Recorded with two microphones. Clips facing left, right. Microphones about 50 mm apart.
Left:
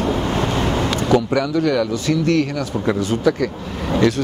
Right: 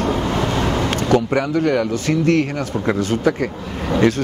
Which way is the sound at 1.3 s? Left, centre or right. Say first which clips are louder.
Even; right.